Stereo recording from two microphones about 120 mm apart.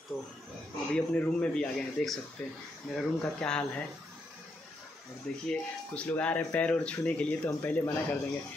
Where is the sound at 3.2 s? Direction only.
10° left (ahead or behind).